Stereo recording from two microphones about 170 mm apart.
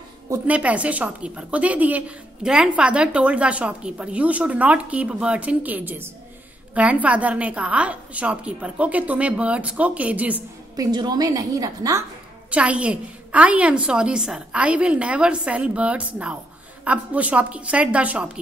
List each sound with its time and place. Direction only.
0.3 s speech: 10° right (ahead or behind)
10.8 s a woman's voice: 25° right (ahead or behind)
12.4 s speech: 5° right (ahead or behind)